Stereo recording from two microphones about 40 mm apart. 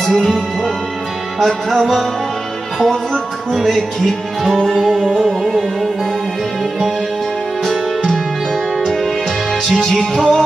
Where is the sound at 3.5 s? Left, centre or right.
Centre.